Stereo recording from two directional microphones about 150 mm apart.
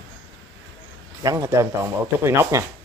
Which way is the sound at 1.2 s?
20° right (ahead or behind).